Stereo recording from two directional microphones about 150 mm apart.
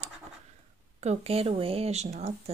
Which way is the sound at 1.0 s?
45° right (ahead or behind).